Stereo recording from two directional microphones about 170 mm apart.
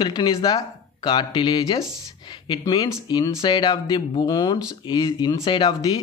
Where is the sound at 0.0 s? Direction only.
25° left (ahead or behind).